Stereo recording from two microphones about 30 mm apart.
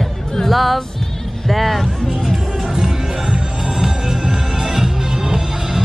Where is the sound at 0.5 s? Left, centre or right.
Centre.